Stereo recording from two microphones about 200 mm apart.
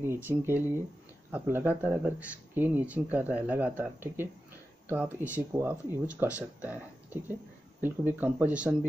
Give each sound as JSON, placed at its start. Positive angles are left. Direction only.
{"t": 0.0, "sound": "speech", "side_deg": -10}